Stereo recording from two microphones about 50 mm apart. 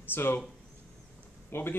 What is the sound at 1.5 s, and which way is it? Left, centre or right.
Speech, left.